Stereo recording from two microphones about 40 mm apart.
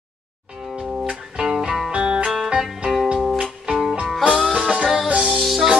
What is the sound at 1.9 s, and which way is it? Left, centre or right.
Music, right.